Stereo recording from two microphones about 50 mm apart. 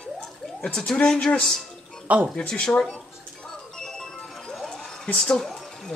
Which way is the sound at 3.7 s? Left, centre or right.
Centre.